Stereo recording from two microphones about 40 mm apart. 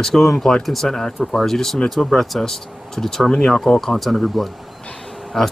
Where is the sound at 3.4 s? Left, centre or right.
Centre.